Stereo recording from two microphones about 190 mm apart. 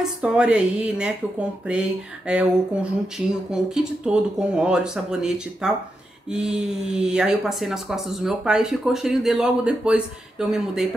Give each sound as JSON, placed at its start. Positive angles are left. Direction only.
{"t": 0.0, "sound": "speech", "side_deg": -5}